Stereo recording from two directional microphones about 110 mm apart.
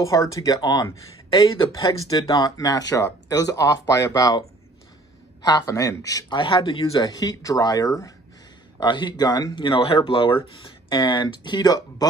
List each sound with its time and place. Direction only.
0.1 s speech: 30° left (ahead or behind)
1.5 s speech: 50° left (ahead or behind)
2.0 s speech: 35° left (ahead or behind)
6.2 s speech: 50° left (ahead or behind)
6.8 s speech: 35° left (ahead or behind)
8.7 s speech: 45° left (ahead or behind)